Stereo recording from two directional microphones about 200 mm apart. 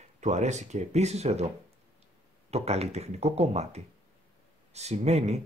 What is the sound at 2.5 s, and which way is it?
Speech, 30° right (ahead or behind).